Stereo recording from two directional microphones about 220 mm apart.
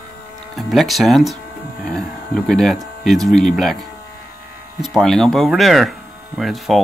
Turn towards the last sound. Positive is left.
turn(degrees=0)  # may be behind; listen again after turning